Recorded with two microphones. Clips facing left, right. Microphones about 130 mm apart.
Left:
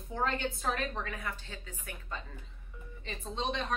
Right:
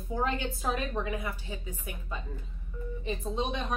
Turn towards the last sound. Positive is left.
turn(degrees=-10)  # may be behind; listen again after turning